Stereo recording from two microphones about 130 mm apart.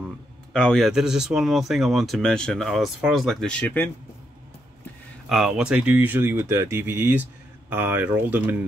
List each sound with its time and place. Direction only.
0.5 s speech: 5° left (ahead or behind)
5.3 s speech: 5° right (ahead or behind)